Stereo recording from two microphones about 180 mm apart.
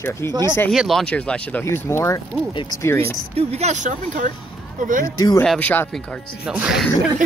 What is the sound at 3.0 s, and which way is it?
Speech, 35° right (ahead or behind).